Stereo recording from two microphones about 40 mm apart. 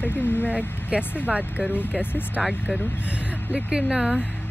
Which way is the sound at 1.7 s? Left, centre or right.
Left.